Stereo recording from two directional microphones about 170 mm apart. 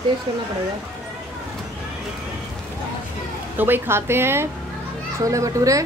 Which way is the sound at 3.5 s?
10° right (ahead or behind).